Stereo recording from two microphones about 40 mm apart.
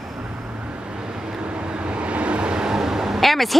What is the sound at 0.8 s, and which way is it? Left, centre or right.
Vehicle, right.